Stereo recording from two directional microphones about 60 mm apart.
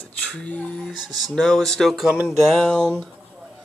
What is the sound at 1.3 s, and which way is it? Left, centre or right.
A man's voice, centre.